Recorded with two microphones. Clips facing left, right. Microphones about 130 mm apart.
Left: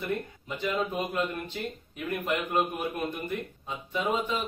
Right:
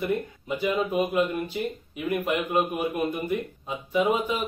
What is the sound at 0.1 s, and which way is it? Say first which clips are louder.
A man's voice: right 5 dB; 10° right (ahead or behind).